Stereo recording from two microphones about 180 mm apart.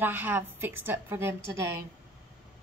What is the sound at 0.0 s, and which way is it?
A woman's voice, 10° right (ahead or behind).